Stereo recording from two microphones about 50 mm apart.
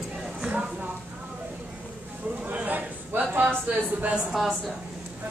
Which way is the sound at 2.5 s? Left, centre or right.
Right.